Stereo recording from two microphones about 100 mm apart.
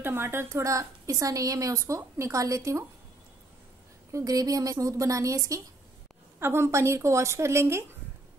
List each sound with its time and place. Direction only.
0.0 s a woman's voice: 25° right (ahead or behind)
4.1 s a woman's voice: 35° right (ahead or behind)